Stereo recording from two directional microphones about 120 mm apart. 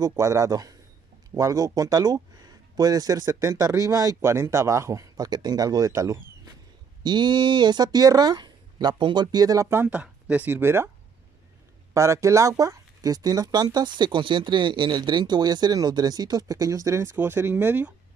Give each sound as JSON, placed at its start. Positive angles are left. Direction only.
{"t": 0.0, "sound": "speech", "side_deg": -30}
{"t": 7.0, "sound": "speech", "side_deg": -40}
{"t": 11.9, "sound": "speech", "side_deg": -25}